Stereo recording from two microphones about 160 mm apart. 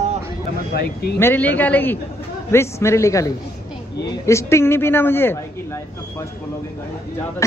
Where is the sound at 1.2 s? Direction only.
10° left (ahead or behind).